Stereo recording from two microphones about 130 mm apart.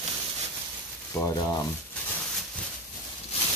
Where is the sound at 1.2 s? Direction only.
20° left (ahead or behind).